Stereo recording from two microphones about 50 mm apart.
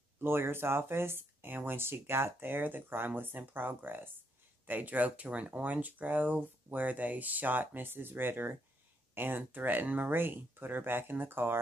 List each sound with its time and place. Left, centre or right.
0.2 s speech: right